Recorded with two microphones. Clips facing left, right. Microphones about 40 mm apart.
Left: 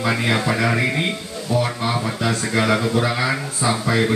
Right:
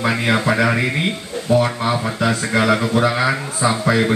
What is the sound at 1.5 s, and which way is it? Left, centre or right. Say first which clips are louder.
Speech: right 5 dB; right.